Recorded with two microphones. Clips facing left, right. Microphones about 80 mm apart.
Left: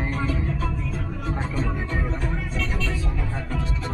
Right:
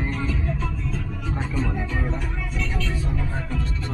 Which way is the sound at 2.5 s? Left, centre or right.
Left.